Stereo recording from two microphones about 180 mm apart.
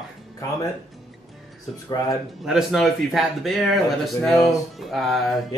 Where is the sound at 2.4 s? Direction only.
5° right (ahead or behind).